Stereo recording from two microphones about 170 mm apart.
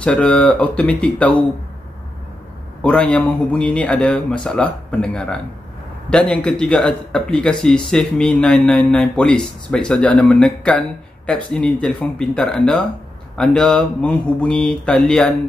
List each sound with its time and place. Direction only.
0.0 s speech: 5° left (ahead or behind)
2.8 s a man's voice: 5° left (ahead or behind)